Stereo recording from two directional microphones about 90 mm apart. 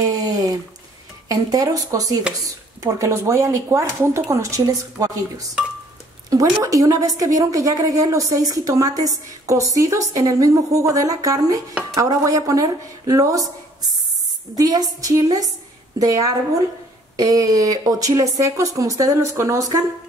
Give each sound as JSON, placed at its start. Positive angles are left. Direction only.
{"t": 0.0, "sound": "a sound", "side_deg": -45}
{"t": 1.3, "sound": "a woman's voice", "side_deg": -40}
{"t": 6.3, "sound": "a woman's voice", "side_deg": -40}
{"t": 14.5, "sound": "a woman's voice", "side_deg": -45}